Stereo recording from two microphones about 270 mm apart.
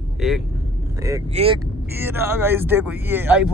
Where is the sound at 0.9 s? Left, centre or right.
Centre.